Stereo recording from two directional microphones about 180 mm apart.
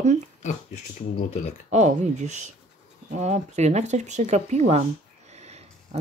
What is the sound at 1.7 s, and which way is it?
Speech, 40° right (ahead or behind).